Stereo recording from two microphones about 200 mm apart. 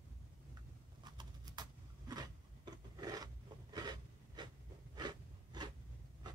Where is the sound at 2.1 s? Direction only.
20° right (ahead or behind).